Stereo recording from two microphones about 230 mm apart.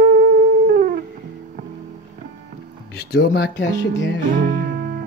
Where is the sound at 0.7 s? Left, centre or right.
Right.